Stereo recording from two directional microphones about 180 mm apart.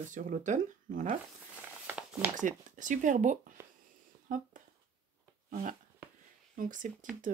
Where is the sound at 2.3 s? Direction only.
45° right (ahead or behind).